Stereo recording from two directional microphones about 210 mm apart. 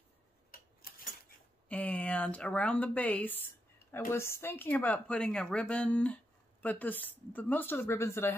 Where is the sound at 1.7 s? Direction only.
5° left (ahead or behind).